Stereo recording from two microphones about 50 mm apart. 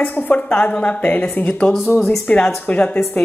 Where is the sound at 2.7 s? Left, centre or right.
Left.